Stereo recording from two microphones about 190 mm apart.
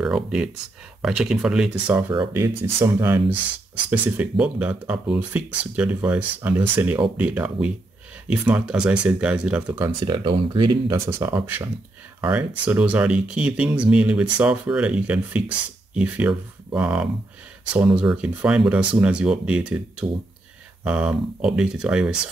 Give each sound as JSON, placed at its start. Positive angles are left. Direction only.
{"t": 0.0, "sound": "speech", "side_deg": -5}
{"t": 9.8, "sound": "speech", "side_deg": -20}
{"t": 11.1, "sound": "speech", "side_deg": -15}